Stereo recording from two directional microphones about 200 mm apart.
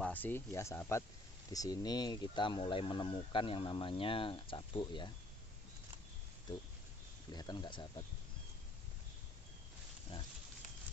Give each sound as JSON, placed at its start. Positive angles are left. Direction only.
{"t": 0.0, "sound": "speech", "side_deg": 10}
{"t": 7.3, "sound": "speech", "side_deg": 20}